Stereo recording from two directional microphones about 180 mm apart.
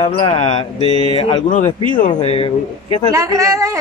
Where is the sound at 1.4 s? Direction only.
45° left (ahead or behind).